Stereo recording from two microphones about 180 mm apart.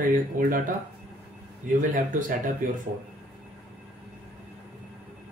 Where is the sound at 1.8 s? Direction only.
45° right (ahead or behind).